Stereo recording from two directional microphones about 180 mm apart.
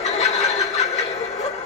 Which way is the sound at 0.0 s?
40° left (ahead or behind).